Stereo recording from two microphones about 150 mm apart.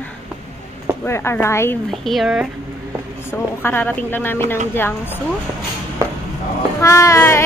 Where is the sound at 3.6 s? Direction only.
15° left (ahead or behind).